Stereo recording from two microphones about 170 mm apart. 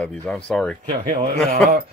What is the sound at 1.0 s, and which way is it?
Speech, 55° right (ahead or behind).